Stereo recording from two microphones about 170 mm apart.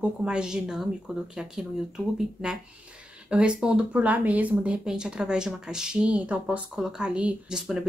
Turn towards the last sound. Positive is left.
turn(degrees=-5)  # may be behind; listen again after turning